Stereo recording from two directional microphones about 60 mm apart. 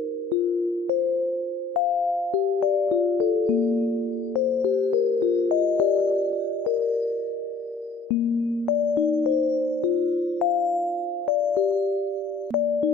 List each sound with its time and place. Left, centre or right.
3.5 s music: left
5.3 s music: left
6.0 s music: right
9.0 s music: centre
10.4 s music: centre